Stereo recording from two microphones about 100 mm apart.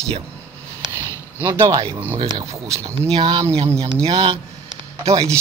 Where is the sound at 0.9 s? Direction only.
25° left (ahead or behind).